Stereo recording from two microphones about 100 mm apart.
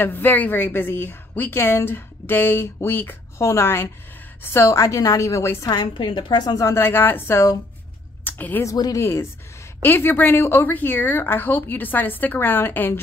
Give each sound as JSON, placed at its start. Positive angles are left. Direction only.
{"t": 0.0, "sound": "a woman's voice", "side_deg": 20}
{"t": 5.7, "sound": "a woman's voice", "side_deg": 50}
{"t": 6.7, "sound": "a woman's voice", "side_deg": 25}
{"t": 8.2, "sound": "a sound", "side_deg": 20}
{"t": 8.6, "sound": "a woman's voice", "side_deg": 35}
{"t": 9.0, "sound": "a woman's voice", "side_deg": 25}